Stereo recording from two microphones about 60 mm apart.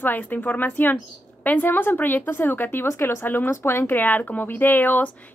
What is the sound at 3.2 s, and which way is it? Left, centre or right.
Speech, left.